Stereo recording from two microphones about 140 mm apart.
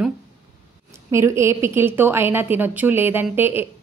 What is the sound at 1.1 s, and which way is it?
A woman's voice, 20° right (ahead or behind).